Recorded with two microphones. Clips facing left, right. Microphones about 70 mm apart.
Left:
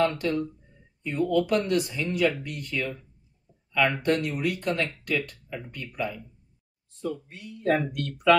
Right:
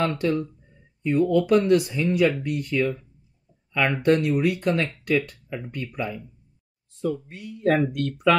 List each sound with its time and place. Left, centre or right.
0.1 s speech: centre